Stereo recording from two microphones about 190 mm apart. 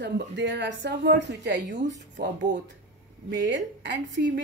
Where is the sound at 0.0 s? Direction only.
65° right (ahead or behind).